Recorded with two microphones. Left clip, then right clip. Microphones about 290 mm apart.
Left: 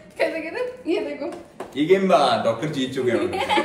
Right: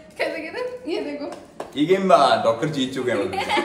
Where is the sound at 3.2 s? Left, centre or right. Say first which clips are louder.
Left 1 dB; centre.